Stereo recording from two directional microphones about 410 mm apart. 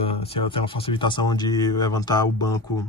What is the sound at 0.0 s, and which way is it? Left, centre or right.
A man's voice, centre.